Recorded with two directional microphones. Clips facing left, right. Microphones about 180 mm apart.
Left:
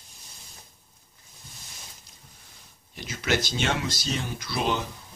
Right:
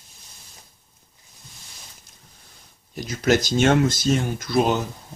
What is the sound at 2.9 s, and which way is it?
Speech, 40° right (ahead or behind).